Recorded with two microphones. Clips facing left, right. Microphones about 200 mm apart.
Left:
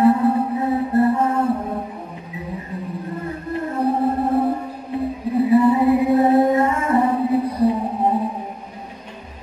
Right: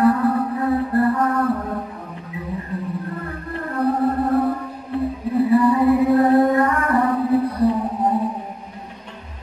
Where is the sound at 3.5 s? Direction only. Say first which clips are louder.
Even; 20° left (ahead or behind).